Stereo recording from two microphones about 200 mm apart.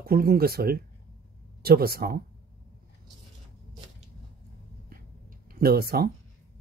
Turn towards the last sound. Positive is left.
turn(degrees=-50)  # may be behind; listen again after turning